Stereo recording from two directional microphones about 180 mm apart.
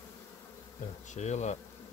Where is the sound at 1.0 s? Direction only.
40° left (ahead or behind).